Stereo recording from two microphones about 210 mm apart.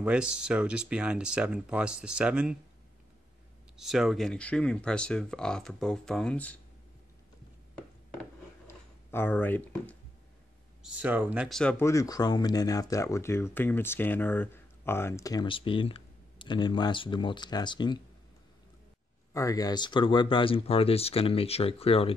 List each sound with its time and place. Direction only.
0.0 s speech: 5° right (ahead or behind)
3.7 s speech: centre (ahead or behind)
8.6 s a sound: 10° left (ahead or behind)
10.8 s speech: 5° right (ahead or behind); by 18.0 s 20° left (ahead or behind)
19.3 s speech: 15° left (ahead or behind)